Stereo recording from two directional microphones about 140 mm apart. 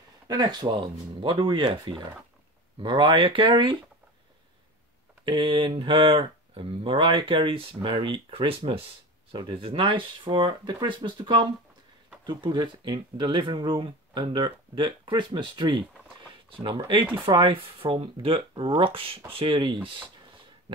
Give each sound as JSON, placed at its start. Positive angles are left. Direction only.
{"t": 0.3, "sound": "speech", "side_deg": -30}
{"t": 5.2, "sound": "speech", "side_deg": -35}